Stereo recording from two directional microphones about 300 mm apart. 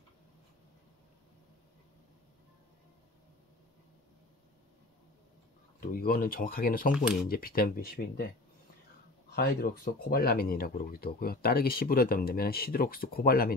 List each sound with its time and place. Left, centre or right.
5.8 s speech: left
9.3 s speech: left